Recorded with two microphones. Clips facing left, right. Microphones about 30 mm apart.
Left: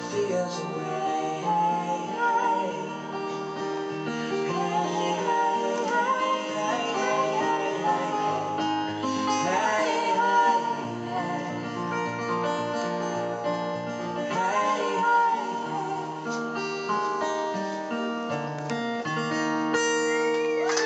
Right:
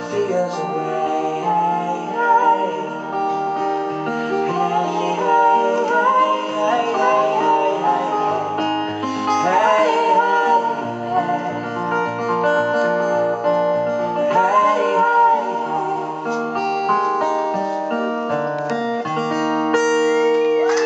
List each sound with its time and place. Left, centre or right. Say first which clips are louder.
0.2 s music: right 7 dB; centre
1.5 s music: right 5 dB; right
4.6 s music: right 7 dB; right
12.8 s music: right 11 dB; centre
20.0 s music: right 9 dB; right
20.5 s music: right 8 dB; right